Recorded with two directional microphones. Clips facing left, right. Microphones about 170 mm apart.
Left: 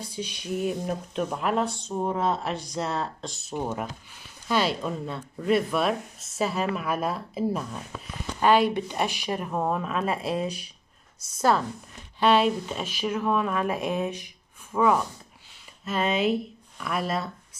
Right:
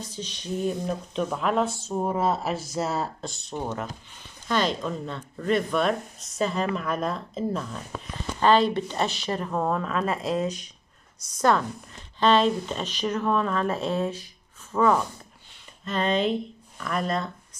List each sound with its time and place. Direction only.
0.0 s speech: 10° left (ahead or behind)